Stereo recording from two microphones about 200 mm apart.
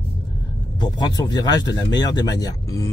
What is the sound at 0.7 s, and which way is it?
Speech, 20° left (ahead or behind).